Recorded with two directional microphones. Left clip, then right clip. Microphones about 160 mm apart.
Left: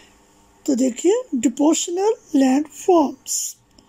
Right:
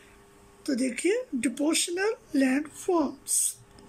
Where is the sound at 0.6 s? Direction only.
20° left (ahead or behind).